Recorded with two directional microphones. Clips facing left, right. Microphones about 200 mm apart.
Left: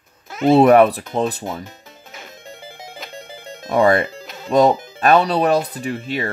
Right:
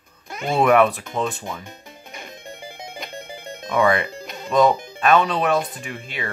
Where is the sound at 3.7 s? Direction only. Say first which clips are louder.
Left 4 dB; 40° left (ahead or behind).